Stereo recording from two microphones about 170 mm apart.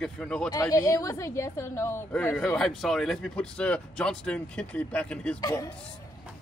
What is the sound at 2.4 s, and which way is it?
Speech, centre (ahead or behind).